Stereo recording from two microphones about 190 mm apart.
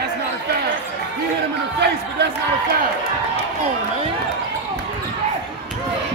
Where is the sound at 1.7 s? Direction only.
65° right (ahead or behind).